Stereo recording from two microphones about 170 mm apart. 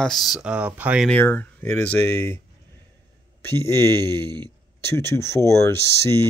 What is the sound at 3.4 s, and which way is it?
Speech, 15° left (ahead or behind).